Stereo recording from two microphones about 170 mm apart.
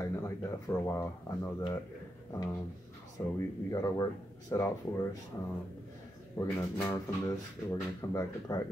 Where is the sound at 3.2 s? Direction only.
15° left (ahead or behind).